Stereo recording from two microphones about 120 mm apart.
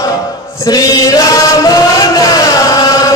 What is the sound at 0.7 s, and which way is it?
Chant, 30° left (ahead or behind).